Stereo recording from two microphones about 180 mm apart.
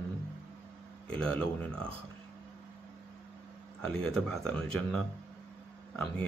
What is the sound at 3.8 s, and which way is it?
Speech, 5° left (ahead or behind).